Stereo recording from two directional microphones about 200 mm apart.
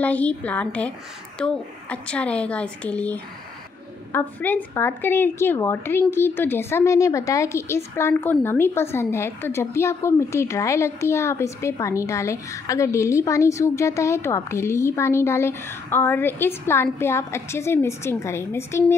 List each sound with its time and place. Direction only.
0.0 s speech: 5° left (ahead or behind)